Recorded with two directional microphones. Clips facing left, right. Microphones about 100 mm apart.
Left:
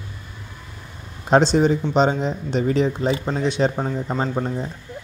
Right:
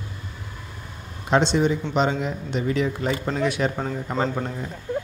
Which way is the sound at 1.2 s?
35° left (ahead or behind).